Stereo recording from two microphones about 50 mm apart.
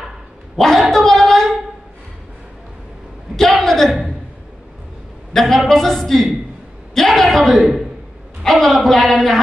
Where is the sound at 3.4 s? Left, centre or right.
Centre.